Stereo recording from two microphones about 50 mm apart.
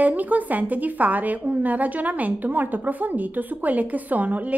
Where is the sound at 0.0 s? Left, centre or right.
Right.